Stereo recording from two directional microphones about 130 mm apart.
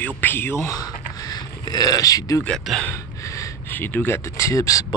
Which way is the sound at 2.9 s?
25° left (ahead or behind).